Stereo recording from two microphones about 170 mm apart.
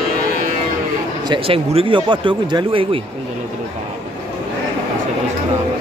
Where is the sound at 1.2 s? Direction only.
30° right (ahead or behind).